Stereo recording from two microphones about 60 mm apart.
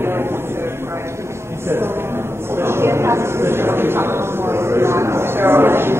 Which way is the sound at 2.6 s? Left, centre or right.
Right.